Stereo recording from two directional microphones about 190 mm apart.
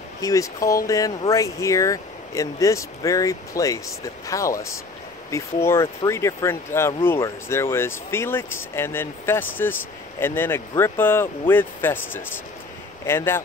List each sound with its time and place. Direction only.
0.2 s speech: 15° left (ahead or behind)